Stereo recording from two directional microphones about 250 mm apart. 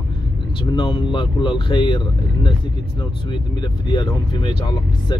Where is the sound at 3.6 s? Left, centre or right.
Centre.